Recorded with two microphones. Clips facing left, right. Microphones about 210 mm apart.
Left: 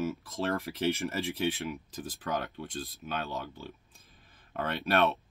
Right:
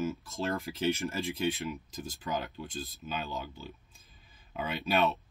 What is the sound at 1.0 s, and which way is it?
Speech, centre (ahead or behind).